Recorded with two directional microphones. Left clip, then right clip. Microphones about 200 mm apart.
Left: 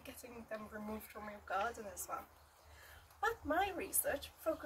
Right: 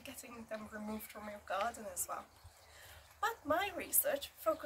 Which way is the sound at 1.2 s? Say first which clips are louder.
Right 1 dB; 20° right (ahead or behind).